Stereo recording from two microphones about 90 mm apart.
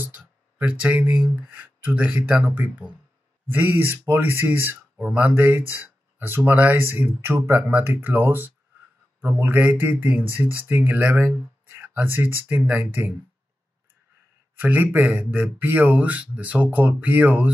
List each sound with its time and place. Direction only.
0.0 s speech: 20° right (ahead or behind)
14.6 s speech: 20° right (ahead or behind)